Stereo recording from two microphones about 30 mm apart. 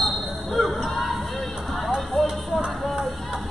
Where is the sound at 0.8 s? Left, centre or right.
Centre.